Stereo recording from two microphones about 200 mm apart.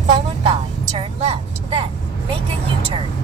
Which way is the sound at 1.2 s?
30° right (ahead or behind).